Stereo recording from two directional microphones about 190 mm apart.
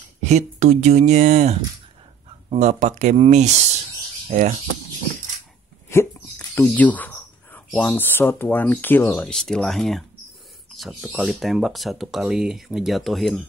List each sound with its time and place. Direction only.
0.2 s speech: 35° right (ahead or behind)
5.9 s speech: 10° left (ahead or behind)